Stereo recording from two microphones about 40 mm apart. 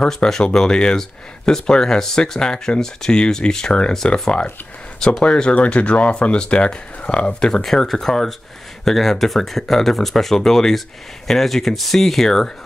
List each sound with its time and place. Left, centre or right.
0.0 s speech: centre
5.5 s speech: left
7.6 s speech: centre